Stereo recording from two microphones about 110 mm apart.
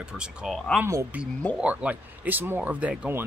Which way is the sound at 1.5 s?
10° right (ahead or behind).